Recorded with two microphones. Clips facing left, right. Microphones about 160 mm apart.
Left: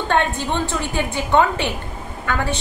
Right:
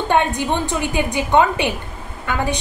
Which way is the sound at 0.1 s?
15° right (ahead or behind).